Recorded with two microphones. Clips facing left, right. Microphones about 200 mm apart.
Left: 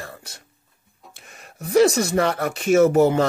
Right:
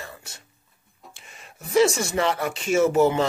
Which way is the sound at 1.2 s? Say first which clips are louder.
Left 2 dB; 55° left (ahead or behind).